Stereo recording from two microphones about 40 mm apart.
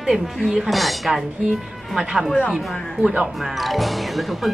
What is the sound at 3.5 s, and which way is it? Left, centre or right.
Speech, centre.